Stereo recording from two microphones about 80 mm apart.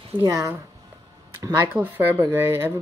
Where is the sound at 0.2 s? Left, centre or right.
Right.